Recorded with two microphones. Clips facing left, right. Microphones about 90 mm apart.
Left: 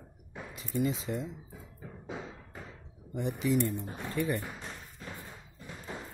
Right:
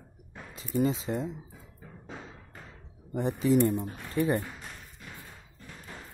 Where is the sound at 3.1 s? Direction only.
35° right (ahead or behind).